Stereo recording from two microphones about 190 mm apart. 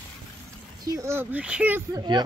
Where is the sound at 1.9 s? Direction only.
20° right (ahead or behind).